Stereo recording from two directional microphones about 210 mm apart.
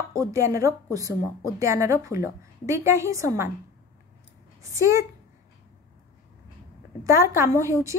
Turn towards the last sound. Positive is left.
turn(degrees=-15)  # may be behind; listen again after turning